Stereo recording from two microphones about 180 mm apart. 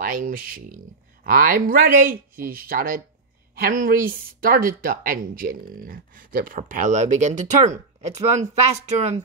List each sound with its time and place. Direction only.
0.0 s speech: 50° right (ahead or behind)